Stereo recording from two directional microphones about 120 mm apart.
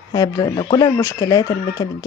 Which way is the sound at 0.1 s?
35° left (ahead or behind).